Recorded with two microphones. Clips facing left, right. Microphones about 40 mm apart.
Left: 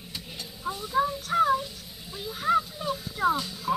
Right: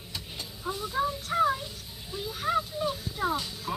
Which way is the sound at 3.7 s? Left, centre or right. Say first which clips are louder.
Left 7 dB; centre.